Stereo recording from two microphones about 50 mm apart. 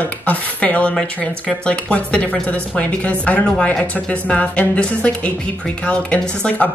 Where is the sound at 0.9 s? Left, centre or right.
Centre.